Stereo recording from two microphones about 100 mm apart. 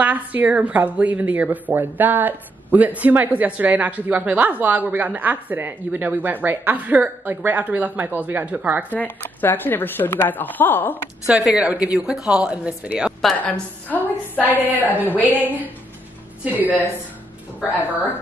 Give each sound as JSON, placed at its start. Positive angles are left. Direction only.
{"t": 0.0, "sound": "speech", "side_deg": -15}
{"t": 8.9, "sound": "a woman's voice", "side_deg": 20}
{"t": 11.2, "sound": "speech", "side_deg": -5}
{"t": 13.4, "sound": "a woman's voice", "side_deg": 15}
{"t": 15.4, "sound": "speech", "side_deg": -15}
{"t": 17.6, "sound": "a woman's voice", "side_deg": 20}